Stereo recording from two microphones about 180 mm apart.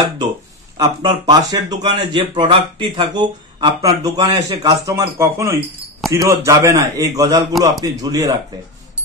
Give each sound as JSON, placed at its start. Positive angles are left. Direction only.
{"t": 0.7, "sound": "speech", "side_deg": -20}